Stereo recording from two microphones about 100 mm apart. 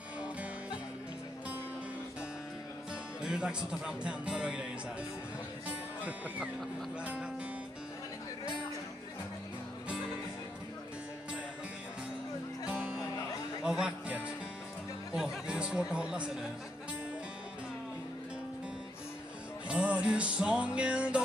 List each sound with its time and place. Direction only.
3.2 s speech: 5° right (ahead or behind)
5.7 s speech: 15° right (ahead or behind)
12.6 s music: 15° right (ahead or behind)
15.1 s chatter: 10° right (ahead or behind)
19.7 s music: 10° right (ahead or behind)